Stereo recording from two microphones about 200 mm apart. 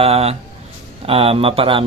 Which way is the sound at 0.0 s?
30° right (ahead or behind).